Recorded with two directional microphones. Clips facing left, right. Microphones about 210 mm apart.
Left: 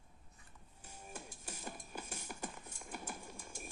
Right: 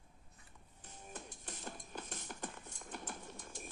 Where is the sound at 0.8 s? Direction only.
10° left (ahead or behind).